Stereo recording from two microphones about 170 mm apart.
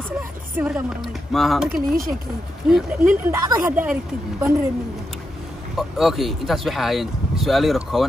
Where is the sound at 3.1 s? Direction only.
15° right (ahead or behind).